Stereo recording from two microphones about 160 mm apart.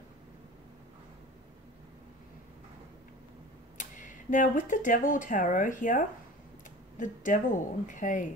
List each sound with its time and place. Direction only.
3.7 s speech: 55° left (ahead or behind)